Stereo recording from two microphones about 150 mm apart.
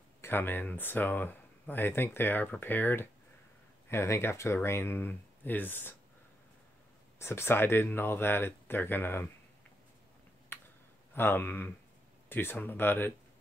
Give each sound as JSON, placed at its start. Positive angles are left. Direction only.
{"t": 0.2, "sound": "speech", "side_deg": 15}
{"t": 7.2, "sound": "speech", "side_deg": 15}
{"t": 11.1, "sound": "speech", "side_deg": 15}